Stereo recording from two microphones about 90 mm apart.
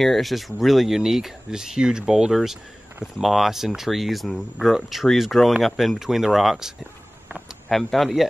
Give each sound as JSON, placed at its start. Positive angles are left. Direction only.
{"t": 0.0, "sound": "speech", "side_deg": 0}
{"t": 7.7, "sound": "speech", "side_deg": 0}